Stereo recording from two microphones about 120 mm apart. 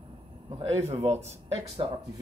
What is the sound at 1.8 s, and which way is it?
Speech, 45° right (ahead or behind).